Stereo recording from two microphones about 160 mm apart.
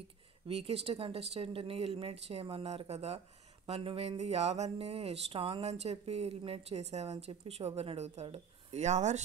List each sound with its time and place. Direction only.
0.5 s speech: 40° right (ahead or behind)